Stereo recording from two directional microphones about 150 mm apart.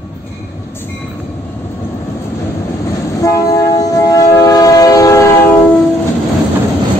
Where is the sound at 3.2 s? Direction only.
20° left (ahead or behind).